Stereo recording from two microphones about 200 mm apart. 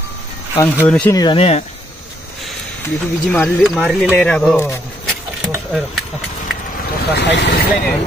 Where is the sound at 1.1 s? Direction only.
25° left (ahead or behind).